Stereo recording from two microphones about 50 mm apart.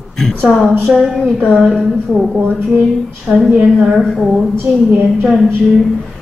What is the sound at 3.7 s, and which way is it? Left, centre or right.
A man's voice, centre.